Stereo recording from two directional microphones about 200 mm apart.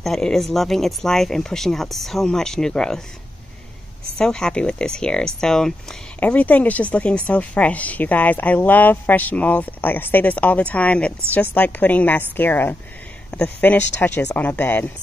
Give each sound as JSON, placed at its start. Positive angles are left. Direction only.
{"t": 0.0, "sound": "speech", "side_deg": 0}
{"t": 4.2, "sound": "a woman's voice", "side_deg": 5}